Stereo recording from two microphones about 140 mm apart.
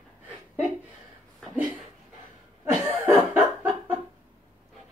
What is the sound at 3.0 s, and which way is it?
Chuckle, 15° right (ahead or behind).